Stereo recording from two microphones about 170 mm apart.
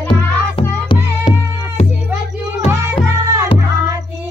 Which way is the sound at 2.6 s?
15° right (ahead or behind).